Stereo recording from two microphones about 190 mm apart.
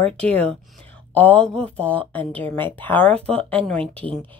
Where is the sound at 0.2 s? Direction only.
35° right (ahead or behind).